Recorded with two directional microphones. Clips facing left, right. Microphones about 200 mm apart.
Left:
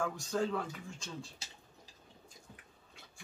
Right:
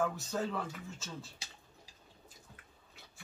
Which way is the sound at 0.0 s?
5° right (ahead or behind).